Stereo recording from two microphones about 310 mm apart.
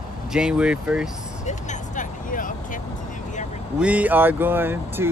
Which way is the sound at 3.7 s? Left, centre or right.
Centre.